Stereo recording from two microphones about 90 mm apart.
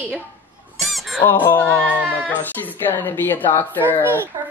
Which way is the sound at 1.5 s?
20° left (ahead or behind).